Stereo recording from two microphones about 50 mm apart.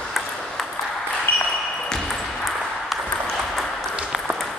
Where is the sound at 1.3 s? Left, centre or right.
Left.